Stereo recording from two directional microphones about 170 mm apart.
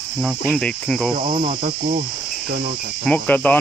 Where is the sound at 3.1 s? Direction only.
10° left (ahead or behind).